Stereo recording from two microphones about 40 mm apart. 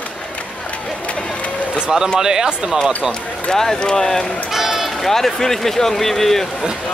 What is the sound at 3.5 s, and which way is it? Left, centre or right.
Speech, centre.